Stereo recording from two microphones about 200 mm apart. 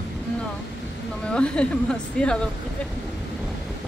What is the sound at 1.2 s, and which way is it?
A woman's voice, 5° left (ahead or behind).